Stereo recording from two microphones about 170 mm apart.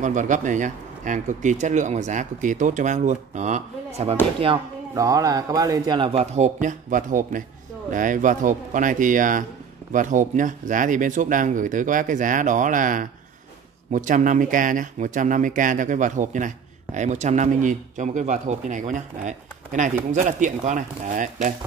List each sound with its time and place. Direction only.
0.0 s speech: 45° right (ahead or behind)
4.9 s a man's voice: 20° right (ahead or behind); by 21.5 s 50° right (ahead or behind)